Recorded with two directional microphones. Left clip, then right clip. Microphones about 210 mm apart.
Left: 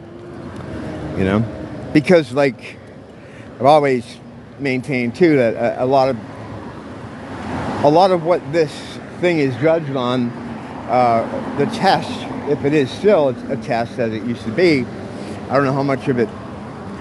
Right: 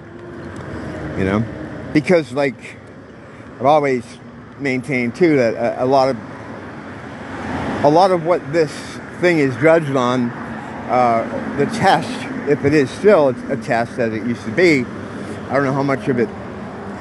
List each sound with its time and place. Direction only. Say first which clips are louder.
1.1 s speech: left 1 dB; 5° left (ahead or behind)
3.6 s speech: left 2 dB; 10° left (ahead or behind)
7.8 s speech: even; centre (ahead or behind)
9.8 s speech: right 4 dB; 15° right (ahead or behind)
10.9 s speech: even; centre (ahead or behind)